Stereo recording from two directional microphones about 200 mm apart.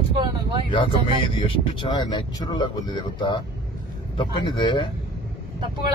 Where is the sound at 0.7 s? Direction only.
25° left (ahead or behind).